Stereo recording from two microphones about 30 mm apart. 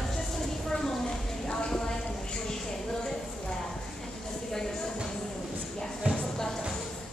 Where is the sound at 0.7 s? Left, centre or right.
Centre.